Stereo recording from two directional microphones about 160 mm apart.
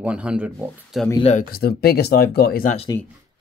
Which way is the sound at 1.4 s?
75° left (ahead or behind).